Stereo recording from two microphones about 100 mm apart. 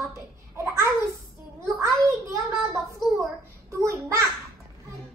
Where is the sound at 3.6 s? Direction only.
30° right (ahead or behind).